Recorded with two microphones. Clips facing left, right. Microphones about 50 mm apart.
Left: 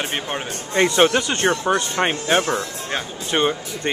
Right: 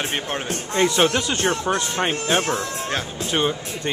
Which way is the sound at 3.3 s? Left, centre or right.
Centre.